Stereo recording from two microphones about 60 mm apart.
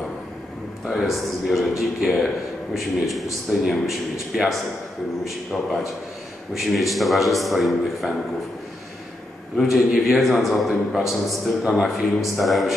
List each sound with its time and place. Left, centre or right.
0.8 s a man's voice: centre
6.5 s a man's voice: centre
9.6 s a man's voice: centre